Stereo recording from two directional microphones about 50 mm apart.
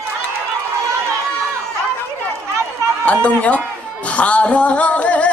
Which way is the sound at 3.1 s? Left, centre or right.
Left.